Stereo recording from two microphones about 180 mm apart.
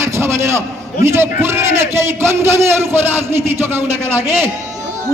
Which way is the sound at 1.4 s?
15° right (ahead or behind).